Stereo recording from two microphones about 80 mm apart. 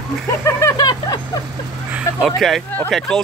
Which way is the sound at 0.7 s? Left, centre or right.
Left.